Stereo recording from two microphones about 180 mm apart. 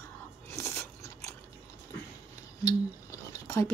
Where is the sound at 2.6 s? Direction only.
15° left (ahead or behind).